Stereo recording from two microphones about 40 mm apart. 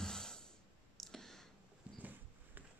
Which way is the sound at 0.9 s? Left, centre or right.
Centre.